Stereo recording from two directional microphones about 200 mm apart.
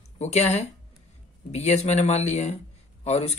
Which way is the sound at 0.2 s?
35° left (ahead or behind).